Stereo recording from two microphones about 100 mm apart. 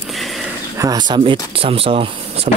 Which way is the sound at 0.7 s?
40° right (ahead or behind).